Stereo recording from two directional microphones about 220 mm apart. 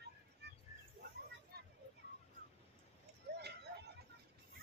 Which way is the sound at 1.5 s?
45° right (ahead or behind).